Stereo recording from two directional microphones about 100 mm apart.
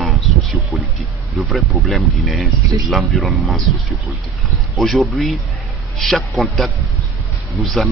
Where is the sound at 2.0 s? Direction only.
Centre (ahead or behind).